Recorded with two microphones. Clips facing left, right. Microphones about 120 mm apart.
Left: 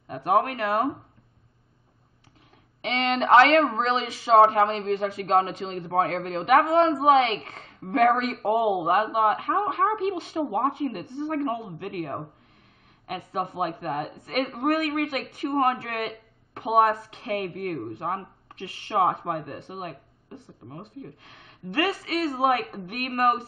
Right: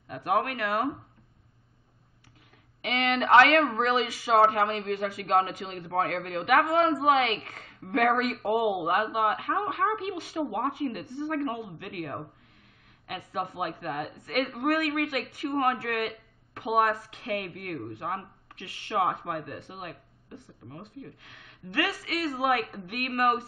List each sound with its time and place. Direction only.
0.1 s a woman's voice: 30° left (ahead or behind)
2.8 s a woman's voice: 30° left (ahead or behind)